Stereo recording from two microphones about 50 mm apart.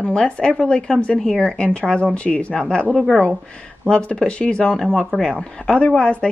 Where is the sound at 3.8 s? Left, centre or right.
Centre.